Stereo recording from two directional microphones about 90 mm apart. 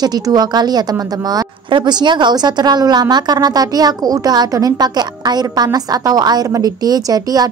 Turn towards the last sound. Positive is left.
turn(degrees=-45)  # may be behind; listen again after turning